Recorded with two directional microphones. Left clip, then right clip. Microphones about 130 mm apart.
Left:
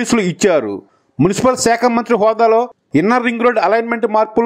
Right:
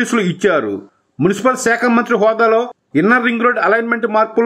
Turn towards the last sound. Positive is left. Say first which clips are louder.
# even
turn(degrees=40)  # may be behind; listen again after turning